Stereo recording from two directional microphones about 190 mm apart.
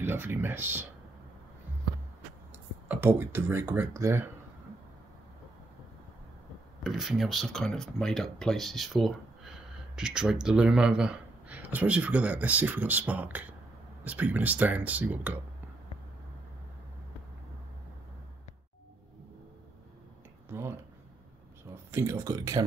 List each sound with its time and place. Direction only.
0.0 s speech: 10° right (ahead or behind)
2.9 s speech: 10° right (ahead or behind)
6.8 s speech: centre (ahead or behind)
20.4 s a sound: 15° right (ahead or behind)
21.9 s speech: 15° right (ahead or behind)